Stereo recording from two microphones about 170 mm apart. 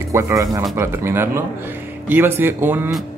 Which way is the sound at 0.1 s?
15° right (ahead or behind).